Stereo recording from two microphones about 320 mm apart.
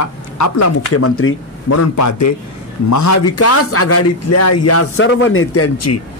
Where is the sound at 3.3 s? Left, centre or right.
Left.